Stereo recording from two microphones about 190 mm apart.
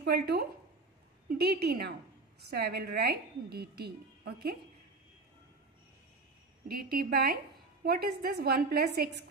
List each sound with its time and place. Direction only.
0.0 s a woman's voice: 55° right (ahead or behind)
6.8 s a woman's voice: 55° right (ahead or behind)